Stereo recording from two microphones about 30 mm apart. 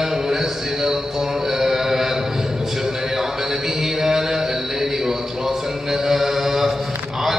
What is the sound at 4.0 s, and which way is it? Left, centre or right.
Mantra, centre.